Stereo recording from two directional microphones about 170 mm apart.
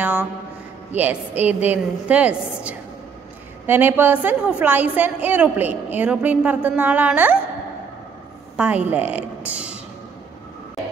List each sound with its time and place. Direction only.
0.0 s a sound: 10° right (ahead or behind)
0.9 s a woman's voice: 10° right (ahead or behind)
8.5 s a woman's voice: 10° right (ahead or behind)